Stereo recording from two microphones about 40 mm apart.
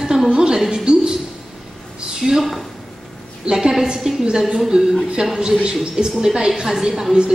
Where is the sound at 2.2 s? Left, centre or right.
Centre.